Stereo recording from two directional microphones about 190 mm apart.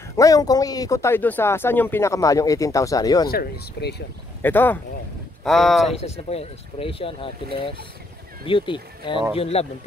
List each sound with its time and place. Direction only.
0.1 s speech: 15° left (ahead or behind)
3.3 s speech: 55° left (ahead or behind)
4.4 s speech: 10° left (ahead or behind)
5.9 s speech: 30° left (ahead or behind)
8.5 s speech: 25° left (ahead or behind)